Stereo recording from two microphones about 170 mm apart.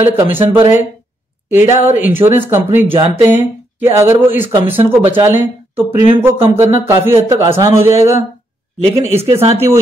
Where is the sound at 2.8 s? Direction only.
30° right (ahead or behind).